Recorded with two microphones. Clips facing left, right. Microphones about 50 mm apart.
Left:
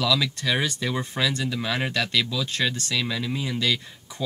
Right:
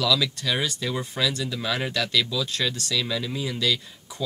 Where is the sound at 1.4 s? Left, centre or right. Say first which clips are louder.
Left 1 dB; centre.